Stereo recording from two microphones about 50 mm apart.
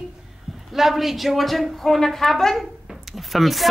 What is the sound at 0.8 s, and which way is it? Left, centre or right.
Speech, centre.